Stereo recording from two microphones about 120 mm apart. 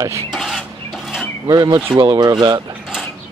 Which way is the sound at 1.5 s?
35° right (ahead or behind).